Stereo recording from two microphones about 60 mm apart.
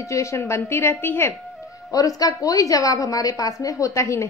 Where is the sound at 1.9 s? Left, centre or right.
Left.